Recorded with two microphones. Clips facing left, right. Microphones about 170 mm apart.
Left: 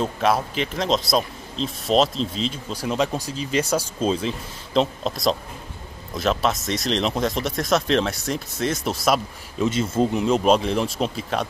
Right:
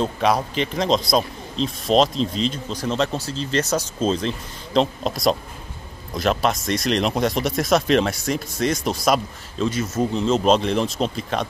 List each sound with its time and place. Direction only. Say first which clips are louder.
0.0 s speech: right 1 dB; 5° left (ahead or behind)
9.6 s speech: left 1 dB; 25° left (ahead or behind)
10.1 s speech: right 2 dB; 10° left (ahead or behind)